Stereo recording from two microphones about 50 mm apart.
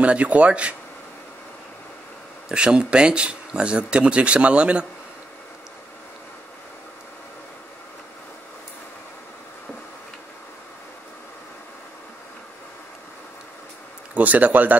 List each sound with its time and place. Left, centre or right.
0.0 s speech: right
2.5 s speech: centre
14.1 s speech: right